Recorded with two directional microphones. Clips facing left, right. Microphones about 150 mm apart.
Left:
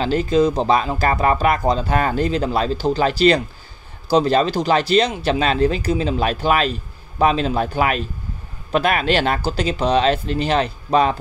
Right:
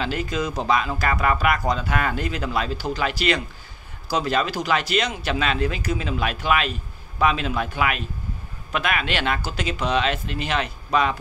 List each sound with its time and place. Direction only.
0.0 s speech: 30° left (ahead or behind)